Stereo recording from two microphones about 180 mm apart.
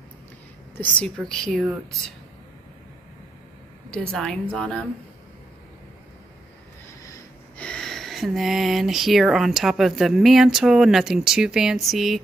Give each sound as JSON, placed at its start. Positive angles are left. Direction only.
{"t": 0.7, "sound": "speech", "side_deg": 5}
{"t": 3.9, "sound": "speech", "side_deg": 5}
{"t": 7.5, "sound": "speech", "side_deg": 5}